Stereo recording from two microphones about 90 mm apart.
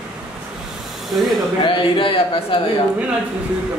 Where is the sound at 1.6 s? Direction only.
70° left (ahead or behind).